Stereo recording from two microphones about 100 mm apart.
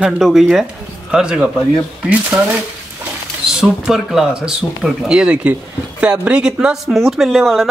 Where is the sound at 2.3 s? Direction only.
25° right (ahead or behind).